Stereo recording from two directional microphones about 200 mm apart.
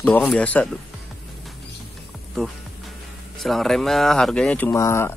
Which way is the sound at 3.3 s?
Centre (ahead or behind).